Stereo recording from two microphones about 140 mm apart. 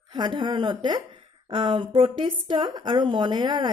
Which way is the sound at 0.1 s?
35° right (ahead or behind).